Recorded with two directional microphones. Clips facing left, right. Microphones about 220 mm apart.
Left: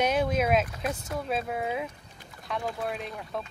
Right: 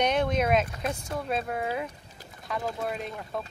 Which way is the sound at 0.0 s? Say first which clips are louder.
Even; 5° left (ahead or behind).